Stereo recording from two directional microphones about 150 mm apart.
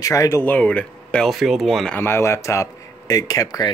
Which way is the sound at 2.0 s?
15° left (ahead or behind).